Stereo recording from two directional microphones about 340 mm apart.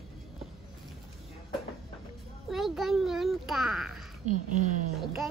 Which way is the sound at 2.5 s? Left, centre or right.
Centre.